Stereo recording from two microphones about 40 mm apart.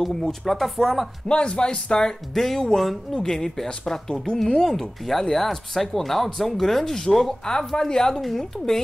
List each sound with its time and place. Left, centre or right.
0.0 s speech: centre
1.3 s speech: left
2.3 s speech: centre